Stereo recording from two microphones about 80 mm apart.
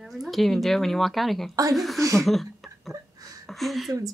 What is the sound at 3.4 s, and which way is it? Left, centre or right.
Speech, centre.